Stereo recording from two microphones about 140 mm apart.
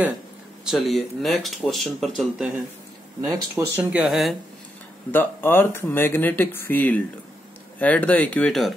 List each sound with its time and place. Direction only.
0.7 s speech: centre (ahead or behind)
3.3 s speech: 15° right (ahead or behind)
5.1 s speech: 15° left (ahead or behind)